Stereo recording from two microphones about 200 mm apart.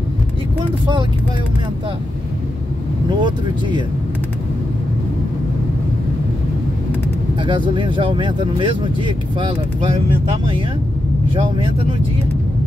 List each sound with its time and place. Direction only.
3.2 s speech: 20° right (ahead or behind)
7.4 s speech: 25° right (ahead or behind)
11.4 s speech: 25° right (ahead or behind)